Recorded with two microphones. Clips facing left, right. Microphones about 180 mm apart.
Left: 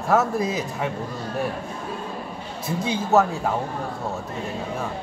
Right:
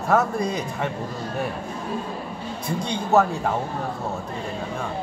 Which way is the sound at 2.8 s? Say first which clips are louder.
Even; 5° left (ahead or behind).